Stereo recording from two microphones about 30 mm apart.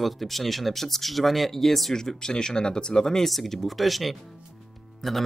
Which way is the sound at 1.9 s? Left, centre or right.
Centre.